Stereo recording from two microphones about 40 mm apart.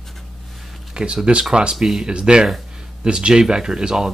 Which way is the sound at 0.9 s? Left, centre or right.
Right.